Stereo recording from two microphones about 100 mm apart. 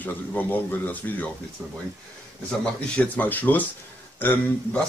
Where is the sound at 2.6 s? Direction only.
15° left (ahead or behind).